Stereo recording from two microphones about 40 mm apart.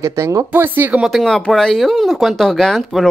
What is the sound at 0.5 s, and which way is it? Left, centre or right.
Speech, right.